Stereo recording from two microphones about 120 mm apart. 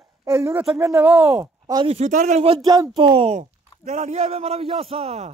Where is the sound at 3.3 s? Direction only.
80° right.